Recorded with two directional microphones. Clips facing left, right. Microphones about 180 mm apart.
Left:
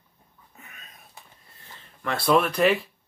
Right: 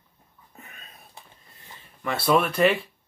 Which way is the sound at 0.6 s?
30° right (ahead or behind).